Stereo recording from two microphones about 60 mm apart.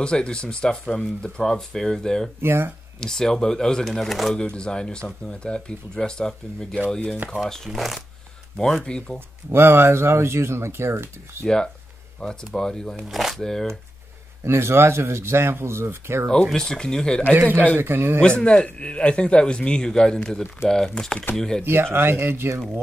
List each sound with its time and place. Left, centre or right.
0.0 s a man's voice: centre
2.4 s speech: right
3.0 s a man's voice: centre
4.4 s a man's voice: centre
8.8 s a man's voice: centre
9.5 s speech: right
11.4 s a man's voice: centre
13.1 s a man's voice: centre
14.4 s speech: right
16.5 s a man's voice: centre
17.4 s a man's voice: right
18.4 s a man's voice: centre
21.6 s speech: right